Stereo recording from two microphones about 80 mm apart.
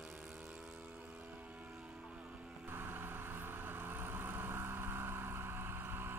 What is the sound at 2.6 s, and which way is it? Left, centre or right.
Vehicle, right.